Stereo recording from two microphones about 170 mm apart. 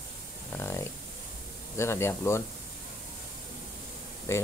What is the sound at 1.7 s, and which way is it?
Speech, 15° left (ahead or behind).